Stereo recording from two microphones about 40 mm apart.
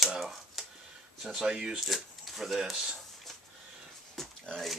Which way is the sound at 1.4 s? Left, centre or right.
Centre.